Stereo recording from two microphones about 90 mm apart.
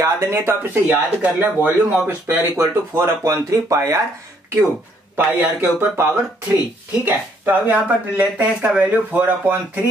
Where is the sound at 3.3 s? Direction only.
40° right (ahead or behind).